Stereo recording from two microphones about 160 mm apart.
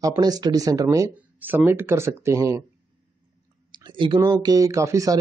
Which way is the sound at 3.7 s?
30° right (ahead or behind).